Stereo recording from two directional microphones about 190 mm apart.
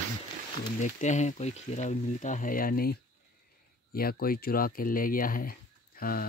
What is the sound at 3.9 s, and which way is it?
Speech, 50° left (ahead or behind).